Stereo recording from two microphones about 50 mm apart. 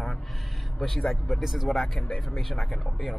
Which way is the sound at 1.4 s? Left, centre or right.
Centre.